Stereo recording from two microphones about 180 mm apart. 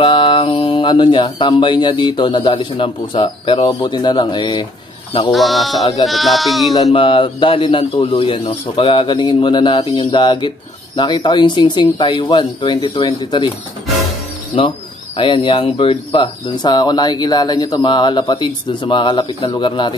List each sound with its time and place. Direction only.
0.0 s speech: 30° left (ahead or behind)
5.3 s speech: centre (ahead or behind)
6.9 s speech: 30° left (ahead or behind)
15.1 s speech: 30° left (ahead or behind)